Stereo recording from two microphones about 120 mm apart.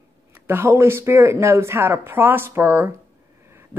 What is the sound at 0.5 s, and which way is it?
A woman's voice, 20° right (ahead or behind).